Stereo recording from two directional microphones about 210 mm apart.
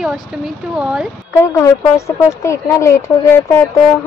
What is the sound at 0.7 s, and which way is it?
Speech, 5° right (ahead or behind).